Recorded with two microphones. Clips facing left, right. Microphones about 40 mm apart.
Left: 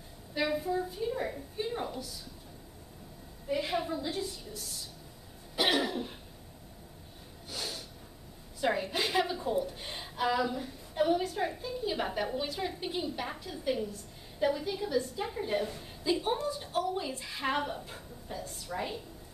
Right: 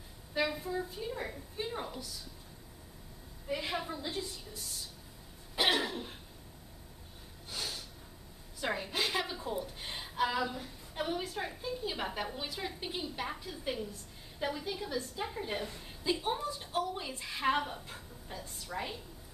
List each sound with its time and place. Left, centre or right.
0.3 s a woman's voice: centre
3.4 s a woman's voice: centre
5.6 s cough: centre
7.4 s snort: centre
8.5 s a woman's voice: centre